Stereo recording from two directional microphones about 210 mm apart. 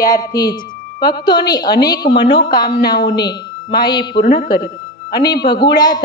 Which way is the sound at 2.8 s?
50° left (ahead or behind).